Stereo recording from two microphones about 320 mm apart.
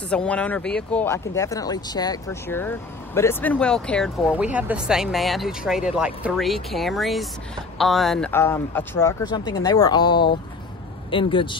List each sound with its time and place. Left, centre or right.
0.1 s speech: centre